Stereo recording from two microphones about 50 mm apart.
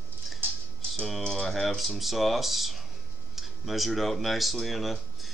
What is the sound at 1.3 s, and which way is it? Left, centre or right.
Speech, centre.